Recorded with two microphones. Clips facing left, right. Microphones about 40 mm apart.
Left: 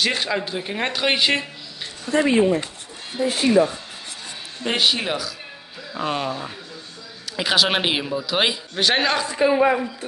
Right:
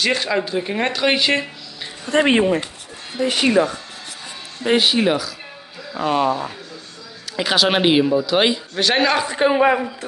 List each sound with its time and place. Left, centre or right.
0.0 s speech: centre
2.0 s speech: right
4.6 s speech: centre
9.3 s speech: right